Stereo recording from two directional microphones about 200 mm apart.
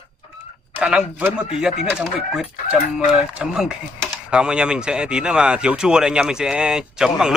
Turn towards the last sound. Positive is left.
turn(degrees=-5)  # may be behind; listen again after turning